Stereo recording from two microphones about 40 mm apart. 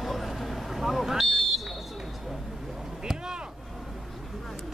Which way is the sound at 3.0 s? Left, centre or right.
Centre.